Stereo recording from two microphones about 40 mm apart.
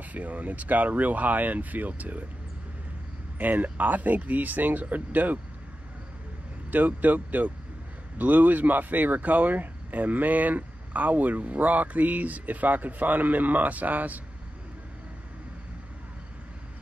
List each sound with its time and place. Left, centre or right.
0.0 s speech: right
3.3 s speech: right
6.7 s speech: right